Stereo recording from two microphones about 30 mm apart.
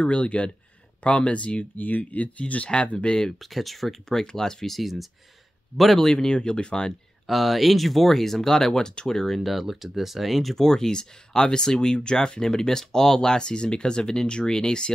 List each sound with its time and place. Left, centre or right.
0.0 s speech: left
1.8 s speech: left
3.3 s speech: centre
4.1 s speech: centre
4.6 s speech: centre
6.1 s speech: left
7.2 s speech: centre
9.4 s speech: centre
10.5 s speech: centre
12.4 s speech: centre